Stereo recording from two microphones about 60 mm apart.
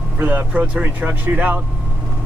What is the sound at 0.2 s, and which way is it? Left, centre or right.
Speech, right.